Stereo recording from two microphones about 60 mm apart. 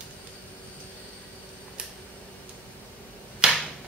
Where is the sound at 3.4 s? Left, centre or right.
Centre.